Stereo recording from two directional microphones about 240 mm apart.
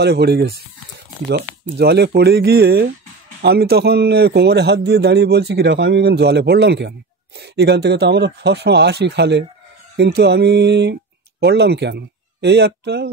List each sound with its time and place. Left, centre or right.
0.0 s a man's voice: right